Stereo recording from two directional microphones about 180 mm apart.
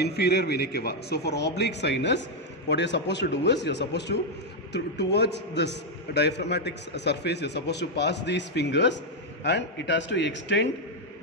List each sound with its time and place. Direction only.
0.0 s a man's voice: 65° left (ahead or behind); by 10.7 s 85° left